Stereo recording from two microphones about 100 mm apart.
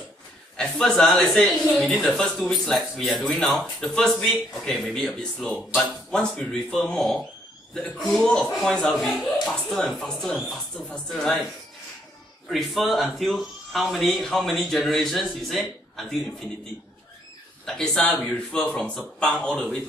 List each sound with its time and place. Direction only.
0.6 s a man's voice: 5° left (ahead or behind)
12.4 s speech: centre (ahead or behind)
17.6 s a man's voice: 5° left (ahead or behind)